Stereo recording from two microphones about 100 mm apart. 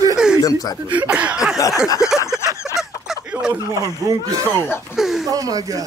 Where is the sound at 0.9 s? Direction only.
15° right (ahead or behind).